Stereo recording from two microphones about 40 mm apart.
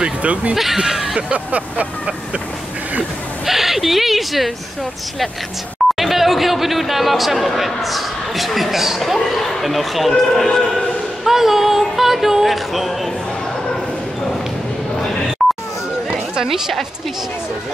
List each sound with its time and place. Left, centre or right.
0.0 s speech: right
0.6 s speech: centre
1.3 s speech: right
3.4 s speech: centre
5.9 s a man's voice: centre
11.2 s a sound: centre
16.4 s a sound: centre